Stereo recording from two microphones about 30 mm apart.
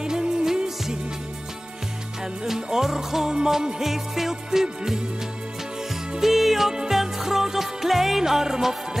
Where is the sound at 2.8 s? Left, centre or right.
Centre.